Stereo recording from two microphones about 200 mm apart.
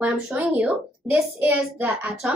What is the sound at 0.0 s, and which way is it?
A child's voice, 5° right (ahead or behind).